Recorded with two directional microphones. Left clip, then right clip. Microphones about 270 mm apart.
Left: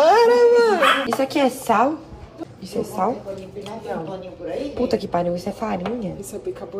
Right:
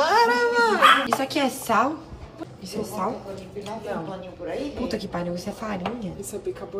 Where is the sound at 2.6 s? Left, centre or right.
Right.